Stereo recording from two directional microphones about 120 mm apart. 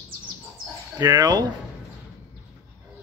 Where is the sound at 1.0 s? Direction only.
35° right (ahead or behind).